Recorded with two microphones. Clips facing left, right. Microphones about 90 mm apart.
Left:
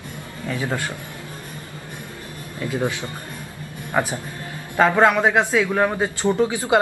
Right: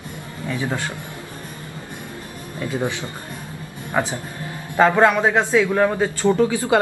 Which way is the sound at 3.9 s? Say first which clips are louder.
Even; 10° right (ahead or behind).